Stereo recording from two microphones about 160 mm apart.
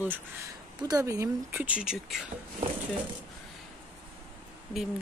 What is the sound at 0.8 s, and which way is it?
Speech, 20° right (ahead or behind).